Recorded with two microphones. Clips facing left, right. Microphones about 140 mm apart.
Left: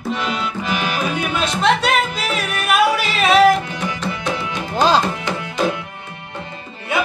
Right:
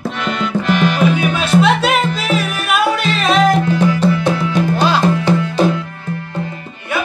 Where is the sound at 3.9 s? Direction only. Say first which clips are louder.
Right 9 dB; 20° left (ahead or behind).